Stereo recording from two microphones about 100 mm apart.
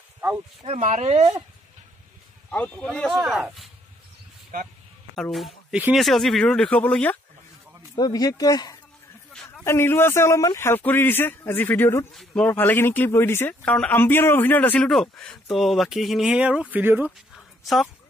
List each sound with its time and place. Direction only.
0.7 s speech: 90° right
2.5 s speech: 15° left (ahead or behind)
3.1 s speech: 5° right (ahead or behind)
5.1 s speech: 5° left (ahead or behind)
8.0 s speech: 40° left (ahead or behind)
9.3 s a sound: 5° left (ahead or behind)
9.7 s speech: 25° left (ahead or behind)
10.8 s speech: 20° left (ahead or behind)
12.1 s speech: centre (ahead or behind)
12.4 s speech: 20° left (ahead or behind)
14.9 s speech: 5° left (ahead or behind); by 17.1 s 20° right (ahead or behind)
17.4 s a sound: centre (ahead or behind)